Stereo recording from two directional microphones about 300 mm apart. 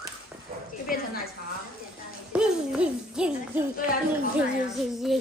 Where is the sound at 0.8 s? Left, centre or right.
Left.